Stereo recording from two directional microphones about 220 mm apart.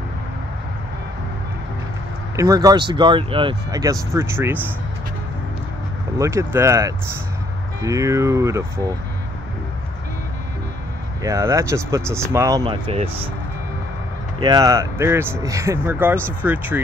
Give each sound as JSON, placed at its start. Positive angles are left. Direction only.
{"t": 2.3, "sound": "speech", "side_deg": -15}
{"t": 6.1, "sound": "speech", "side_deg": -15}
{"t": 11.2, "sound": "speech", "side_deg": -15}
{"t": 14.4, "sound": "speech", "side_deg": -20}